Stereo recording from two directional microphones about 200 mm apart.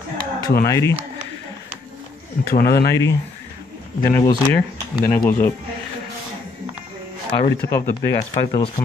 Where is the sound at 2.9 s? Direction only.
15° left (ahead or behind).